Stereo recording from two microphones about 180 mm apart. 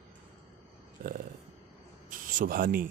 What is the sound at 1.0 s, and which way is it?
A man's voice, 50° right (ahead or behind).